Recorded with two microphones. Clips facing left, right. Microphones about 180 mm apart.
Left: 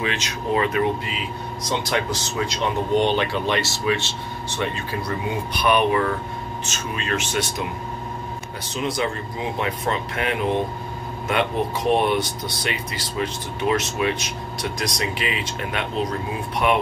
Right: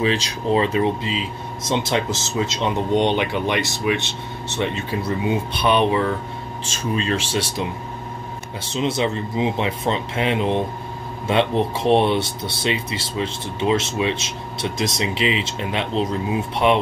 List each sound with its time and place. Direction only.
0.0 s speech: 30° right (ahead or behind)
8.6 s speech: 25° right (ahead or behind)